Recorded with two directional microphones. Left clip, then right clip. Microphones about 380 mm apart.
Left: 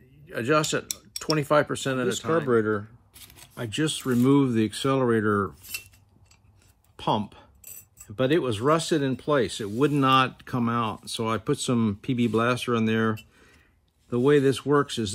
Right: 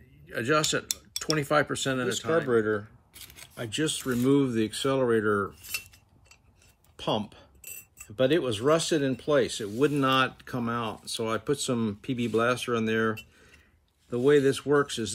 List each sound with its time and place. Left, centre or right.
0.3 s speech: centre
7.0 s speech: centre